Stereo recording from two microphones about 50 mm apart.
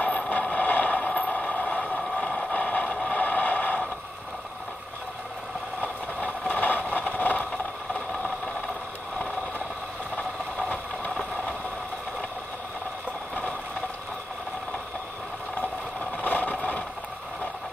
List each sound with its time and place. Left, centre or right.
0.3 s vehicle: left
2.5 s vehicle: left
3.1 s a sound: left
5.8 s vehicle: left
16.2 s vehicle: left